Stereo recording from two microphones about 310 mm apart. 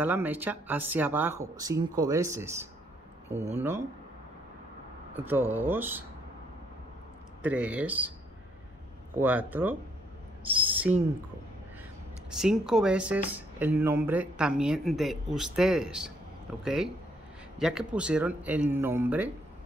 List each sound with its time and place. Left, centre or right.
0.0 s speech: centre
5.1 s speech: centre
7.4 s speech: centre
9.1 s speech: centre
12.4 s speech: centre